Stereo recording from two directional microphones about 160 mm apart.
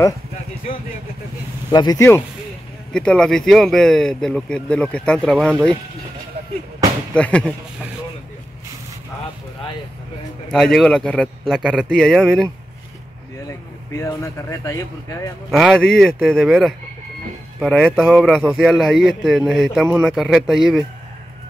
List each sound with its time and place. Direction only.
1.7 s speech: 25° left (ahead or behind)
2.9 s speech: 5° left (ahead or behind)
7.2 s speech: 5° left (ahead or behind)
10.5 s speech: centre (ahead or behind)
13.5 s speech: 15° left (ahead or behind)
15.5 s speech: centre (ahead or behind)